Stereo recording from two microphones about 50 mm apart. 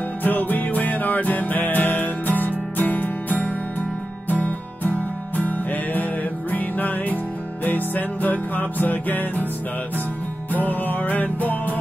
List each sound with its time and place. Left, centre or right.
0.2 s music: left
10.5 s music: left